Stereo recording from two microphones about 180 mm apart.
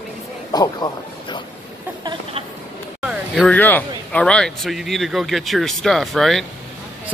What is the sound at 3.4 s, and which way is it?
Speech, 10° left (ahead or behind).